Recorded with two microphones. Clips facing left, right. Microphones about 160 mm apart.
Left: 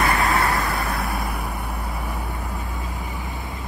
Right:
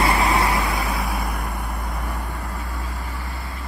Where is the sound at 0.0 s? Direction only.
20° right (ahead or behind).